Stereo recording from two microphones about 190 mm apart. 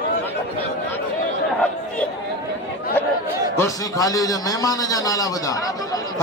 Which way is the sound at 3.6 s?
20° left (ahead or behind).